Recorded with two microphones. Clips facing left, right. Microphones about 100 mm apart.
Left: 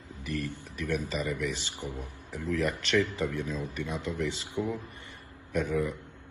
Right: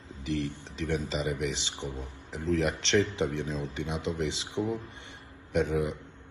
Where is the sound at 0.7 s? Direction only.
25° right (ahead or behind).